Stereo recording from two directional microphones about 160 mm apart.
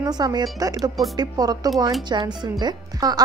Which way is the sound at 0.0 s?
25° right (ahead or behind).